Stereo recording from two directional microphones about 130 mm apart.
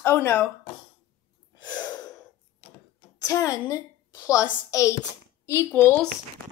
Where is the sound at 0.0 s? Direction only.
15° left (ahead or behind).